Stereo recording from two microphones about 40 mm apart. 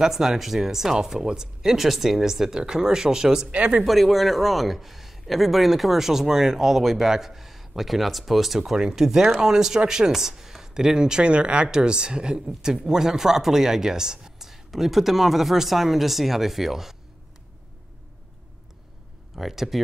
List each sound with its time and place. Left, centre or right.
0.1 s speech: centre
3.5 s speech: right
3.8 s a man's voice: centre
19.3 s speech: centre